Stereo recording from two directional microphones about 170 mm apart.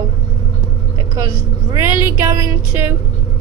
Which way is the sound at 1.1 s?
25° right (ahead or behind).